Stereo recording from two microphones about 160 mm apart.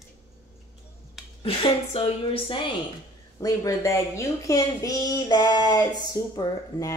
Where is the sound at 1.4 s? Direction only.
35° left (ahead or behind).